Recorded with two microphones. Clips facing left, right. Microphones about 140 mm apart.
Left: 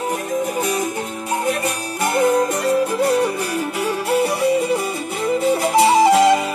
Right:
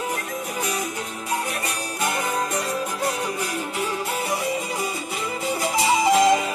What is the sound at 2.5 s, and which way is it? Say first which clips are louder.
Music: left 8 dB; 65° left (ahead or behind).